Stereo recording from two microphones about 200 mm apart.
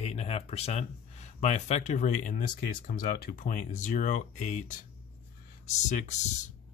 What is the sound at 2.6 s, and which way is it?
Speech, 50° left (ahead or behind).